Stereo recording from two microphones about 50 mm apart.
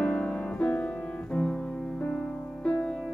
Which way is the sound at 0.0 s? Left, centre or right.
Left.